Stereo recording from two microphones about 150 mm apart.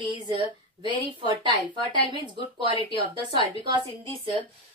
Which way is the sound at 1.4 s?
35° right (ahead or behind).